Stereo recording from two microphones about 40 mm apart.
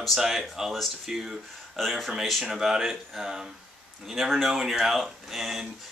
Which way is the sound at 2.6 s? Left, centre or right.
Centre.